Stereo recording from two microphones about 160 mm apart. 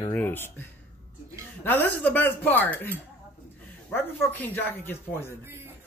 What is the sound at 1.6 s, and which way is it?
Speech, 10° left (ahead or behind).